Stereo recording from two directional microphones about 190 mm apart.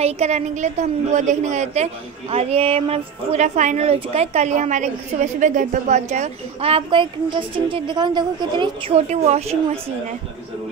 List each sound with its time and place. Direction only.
0.0 s speech: 35° right (ahead or behind)